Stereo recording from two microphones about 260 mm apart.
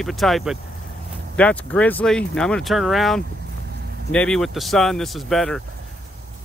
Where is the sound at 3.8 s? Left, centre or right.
Right.